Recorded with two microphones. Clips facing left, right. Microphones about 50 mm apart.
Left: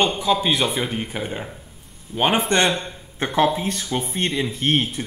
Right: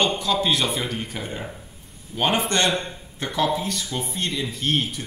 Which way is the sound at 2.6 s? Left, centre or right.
Centre.